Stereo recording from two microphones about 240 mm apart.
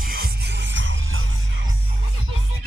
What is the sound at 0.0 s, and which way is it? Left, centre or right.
Music, right.